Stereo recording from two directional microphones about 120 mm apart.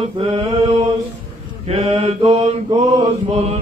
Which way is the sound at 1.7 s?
60° right (ahead or behind).